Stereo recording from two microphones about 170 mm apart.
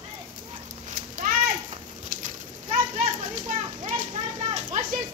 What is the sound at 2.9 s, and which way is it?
Children playing, 45° right (ahead or behind).